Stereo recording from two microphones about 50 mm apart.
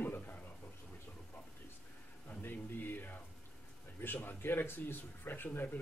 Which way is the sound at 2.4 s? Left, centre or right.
Left.